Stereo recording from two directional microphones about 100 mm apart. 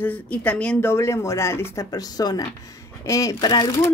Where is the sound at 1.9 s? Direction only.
40° left (ahead or behind).